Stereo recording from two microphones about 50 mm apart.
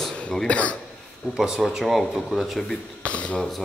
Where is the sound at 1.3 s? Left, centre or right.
Centre.